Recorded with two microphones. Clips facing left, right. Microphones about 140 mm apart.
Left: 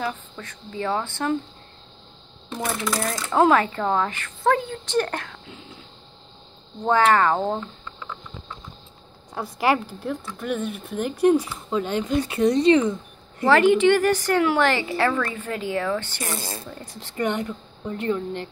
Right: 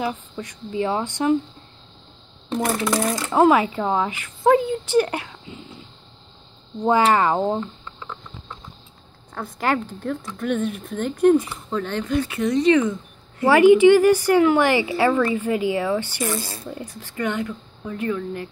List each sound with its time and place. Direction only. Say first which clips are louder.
0.0 s speech: right 3 dB; 15° right (ahead or behind)
2.8 s speech: right 4 dB; centre (ahead or behind)
9.3 s speech: left 1 dB; 10° left (ahead or behind); by 12.9 s 30° left (ahead or behind)
13.5 s speech: right 4 dB; 10° right (ahead or behind)
17.0 s speech: left 1 dB; 25° left (ahead or behind)